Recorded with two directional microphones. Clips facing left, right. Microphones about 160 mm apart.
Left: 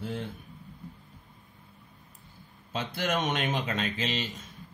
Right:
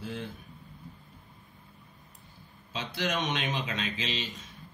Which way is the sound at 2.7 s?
50° left (ahead or behind).